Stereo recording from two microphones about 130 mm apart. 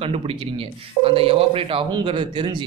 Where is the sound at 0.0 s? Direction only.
50° right (ahead or behind).